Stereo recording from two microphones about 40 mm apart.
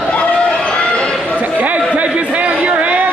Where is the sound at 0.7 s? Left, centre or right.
Left.